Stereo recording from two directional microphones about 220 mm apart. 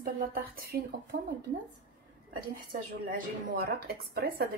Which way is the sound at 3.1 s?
45° right (ahead or behind).